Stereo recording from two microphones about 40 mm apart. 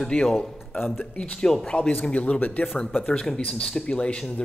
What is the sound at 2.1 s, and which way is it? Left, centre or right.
Speech, left.